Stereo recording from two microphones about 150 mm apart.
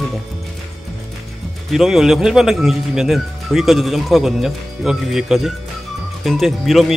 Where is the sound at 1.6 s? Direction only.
Centre (ahead or behind).